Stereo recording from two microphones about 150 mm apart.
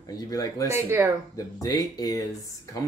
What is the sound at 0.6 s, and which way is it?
Speech, 15° right (ahead or behind).